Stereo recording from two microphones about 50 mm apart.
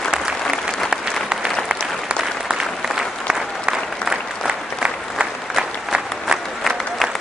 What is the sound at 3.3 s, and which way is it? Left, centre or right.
Applause, centre.